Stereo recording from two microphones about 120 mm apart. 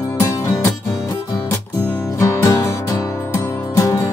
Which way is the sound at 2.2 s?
25° left (ahead or behind).